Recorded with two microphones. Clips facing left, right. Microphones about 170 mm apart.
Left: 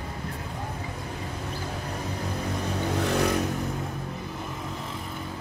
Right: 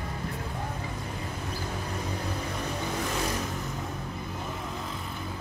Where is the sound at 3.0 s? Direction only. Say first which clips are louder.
Left 8 dB; 65° left (ahead or behind).